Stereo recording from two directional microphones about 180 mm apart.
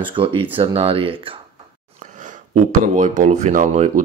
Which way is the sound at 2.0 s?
45° right (ahead or behind).